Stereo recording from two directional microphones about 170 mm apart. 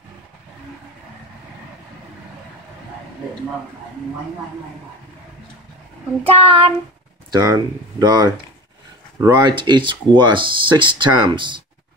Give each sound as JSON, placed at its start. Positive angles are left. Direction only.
{"t": 6.2, "sound": "child singing", "side_deg": -35}
{"t": 7.3, "sound": "speech", "side_deg": -25}